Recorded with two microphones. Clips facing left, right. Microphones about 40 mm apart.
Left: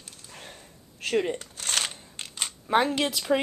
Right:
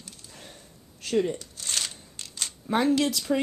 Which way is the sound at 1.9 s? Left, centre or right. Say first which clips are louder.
Left 3 dB; left.